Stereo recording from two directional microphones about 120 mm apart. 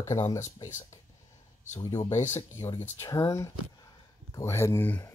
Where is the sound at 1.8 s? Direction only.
25° left (ahead or behind).